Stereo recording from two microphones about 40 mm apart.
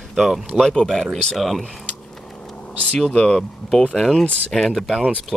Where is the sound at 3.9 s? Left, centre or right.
Centre.